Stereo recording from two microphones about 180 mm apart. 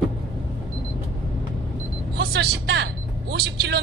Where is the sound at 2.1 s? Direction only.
65° right (ahead or behind).